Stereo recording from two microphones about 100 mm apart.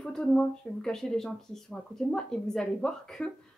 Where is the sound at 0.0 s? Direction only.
10° left (ahead or behind).